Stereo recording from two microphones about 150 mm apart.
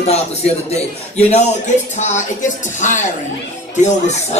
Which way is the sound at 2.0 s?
50° left (ahead or behind).